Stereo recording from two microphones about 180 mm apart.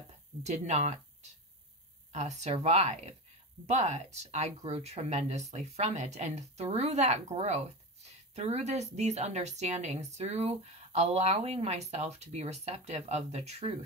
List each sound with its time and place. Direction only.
0.4 s speech: 40° right (ahead or behind)